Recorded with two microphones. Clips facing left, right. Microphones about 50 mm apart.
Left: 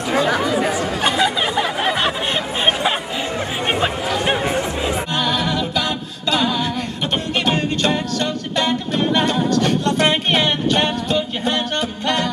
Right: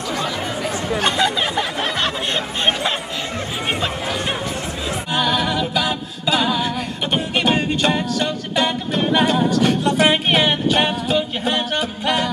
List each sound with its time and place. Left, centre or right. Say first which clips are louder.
0.3 s chatter: left 7 dB; left
0.6 s chatter: left 4 dB; left
1.0 s a sound: left 1 dB; centre
5.1 s music: right 4 dB; centre